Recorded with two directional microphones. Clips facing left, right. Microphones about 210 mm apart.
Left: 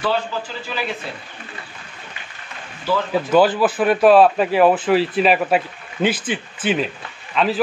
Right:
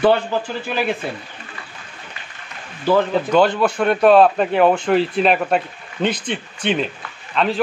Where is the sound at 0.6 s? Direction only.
55° right (ahead or behind).